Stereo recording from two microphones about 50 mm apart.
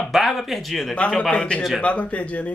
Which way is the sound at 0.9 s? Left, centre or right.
Left.